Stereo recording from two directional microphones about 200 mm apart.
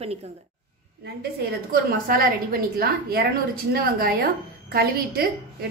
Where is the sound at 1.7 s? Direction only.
45° right (ahead or behind).